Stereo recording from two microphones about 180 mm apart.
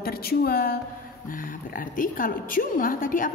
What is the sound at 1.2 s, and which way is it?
A woman's voice, 50° left (ahead or behind).